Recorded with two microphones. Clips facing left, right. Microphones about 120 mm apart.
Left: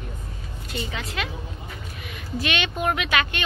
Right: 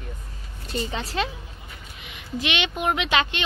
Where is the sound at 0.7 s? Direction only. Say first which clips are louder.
Right 3 dB; 30° right (ahead or behind).